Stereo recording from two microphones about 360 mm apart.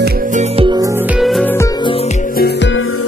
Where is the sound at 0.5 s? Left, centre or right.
Centre.